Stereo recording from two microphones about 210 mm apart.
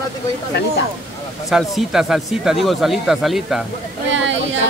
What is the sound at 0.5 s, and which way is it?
Speech, 55° left (ahead or behind).